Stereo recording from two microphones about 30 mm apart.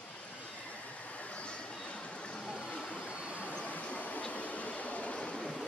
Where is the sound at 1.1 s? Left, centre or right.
Left.